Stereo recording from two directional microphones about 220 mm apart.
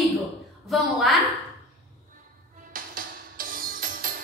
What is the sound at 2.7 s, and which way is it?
Music, 40° right (ahead or behind).